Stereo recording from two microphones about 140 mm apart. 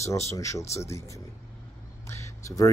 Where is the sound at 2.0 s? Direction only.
20° left (ahead or behind).